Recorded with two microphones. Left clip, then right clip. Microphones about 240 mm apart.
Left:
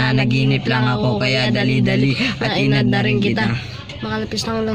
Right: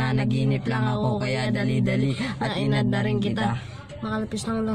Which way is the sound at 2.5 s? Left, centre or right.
Centre.